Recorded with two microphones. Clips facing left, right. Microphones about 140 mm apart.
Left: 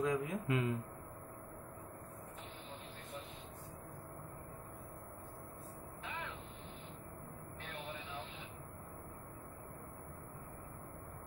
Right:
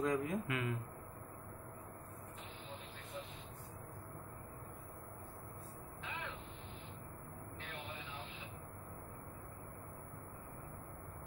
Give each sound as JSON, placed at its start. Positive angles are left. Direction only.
{"t": 0.0, "sound": "a man's voice", "side_deg": 0}
{"t": 0.5, "sound": "speech", "side_deg": 25}